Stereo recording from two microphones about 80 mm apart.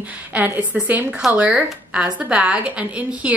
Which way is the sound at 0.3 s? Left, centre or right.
Centre.